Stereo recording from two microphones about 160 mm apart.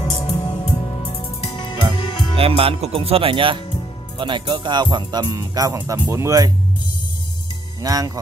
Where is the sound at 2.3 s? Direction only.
35° right (ahead or behind).